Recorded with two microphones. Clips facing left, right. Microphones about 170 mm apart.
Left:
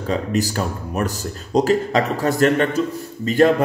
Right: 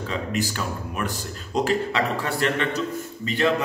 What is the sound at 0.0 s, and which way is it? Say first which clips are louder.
A man's voice: left 6 dB; 40° left (ahead or behind).